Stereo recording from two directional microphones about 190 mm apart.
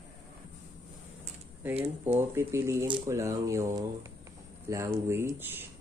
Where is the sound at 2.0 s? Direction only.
10° right (ahead or behind).